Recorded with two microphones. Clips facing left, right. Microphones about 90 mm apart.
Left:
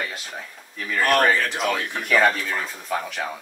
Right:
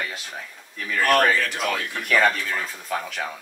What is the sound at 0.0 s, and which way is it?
Speech, 5° left (ahead or behind).